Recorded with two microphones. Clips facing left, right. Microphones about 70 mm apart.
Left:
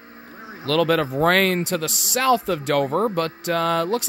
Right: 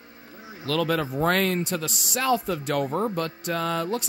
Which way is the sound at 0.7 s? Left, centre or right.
Left.